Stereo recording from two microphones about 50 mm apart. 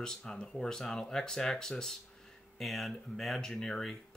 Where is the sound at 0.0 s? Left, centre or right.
Centre.